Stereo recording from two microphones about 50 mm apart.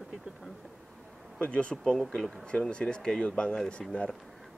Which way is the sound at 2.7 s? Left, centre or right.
Centre.